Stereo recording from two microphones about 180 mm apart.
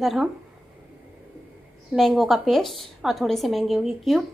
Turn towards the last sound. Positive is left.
turn(degrees=0)  # may be behind; listen again after turning